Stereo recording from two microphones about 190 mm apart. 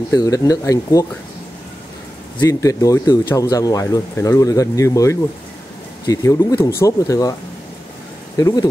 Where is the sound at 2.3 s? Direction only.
15° left (ahead or behind).